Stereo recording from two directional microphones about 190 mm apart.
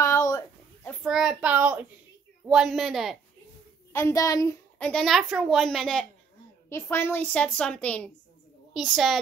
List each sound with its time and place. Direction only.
0.0 s a sound: 15° left (ahead or behind)
1.0 s a child's voice: 5° right (ahead or behind)
3.9 s a woman's voice: 15° left (ahead or behind)
4.7 s a woman's voice: 5° left (ahead or behind)